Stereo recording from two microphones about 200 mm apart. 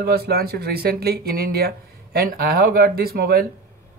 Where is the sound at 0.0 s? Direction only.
50° right (ahead or behind).